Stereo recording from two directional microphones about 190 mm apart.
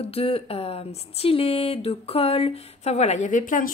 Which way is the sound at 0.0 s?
30° left (ahead or behind).